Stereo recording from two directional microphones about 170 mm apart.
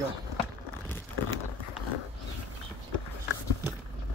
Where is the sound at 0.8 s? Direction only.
15° left (ahead or behind).